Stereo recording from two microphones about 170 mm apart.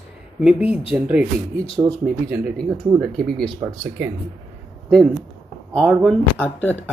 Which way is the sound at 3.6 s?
15° right (ahead or behind).